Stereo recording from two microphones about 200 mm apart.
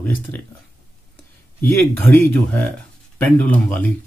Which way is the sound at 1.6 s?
10° left (ahead or behind).